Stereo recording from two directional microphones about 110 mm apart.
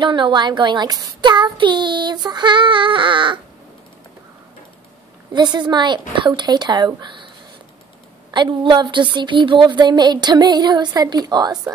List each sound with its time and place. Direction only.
0.0 s a child's voice: 45° right (ahead or behind)
5.3 s a child's voice: 40° right (ahead or behind)
8.3 s a woman's voice: 45° right (ahead or behind)